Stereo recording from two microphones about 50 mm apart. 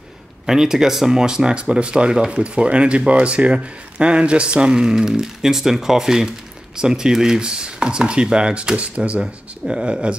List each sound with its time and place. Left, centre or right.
0.5 s speech: centre